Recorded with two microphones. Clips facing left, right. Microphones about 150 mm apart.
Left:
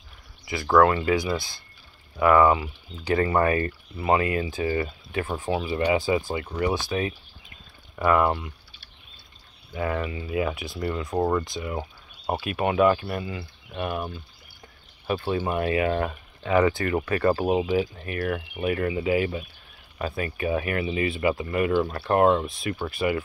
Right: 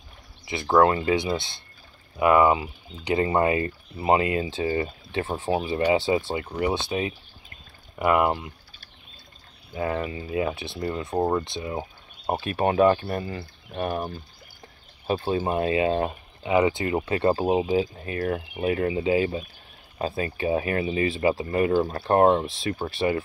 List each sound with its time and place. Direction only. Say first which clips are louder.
0.5 s speech: even; 25° right (ahead or behind)
9.8 s speech: even; 30° right (ahead or behind)
10.8 s speech: left 1 dB; 40° right (ahead or behind)
11.1 s speech: even; 25° right (ahead or behind)